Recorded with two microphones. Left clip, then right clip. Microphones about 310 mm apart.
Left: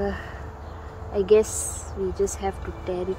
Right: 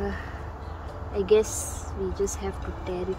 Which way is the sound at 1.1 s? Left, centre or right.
Centre.